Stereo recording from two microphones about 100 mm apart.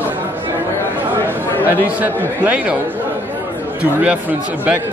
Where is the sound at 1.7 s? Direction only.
20° right (ahead or behind).